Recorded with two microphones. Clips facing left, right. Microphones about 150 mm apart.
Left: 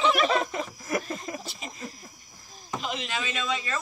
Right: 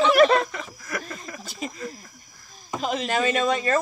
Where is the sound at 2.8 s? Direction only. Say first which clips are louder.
Right 10 dB; 45° right (ahead or behind).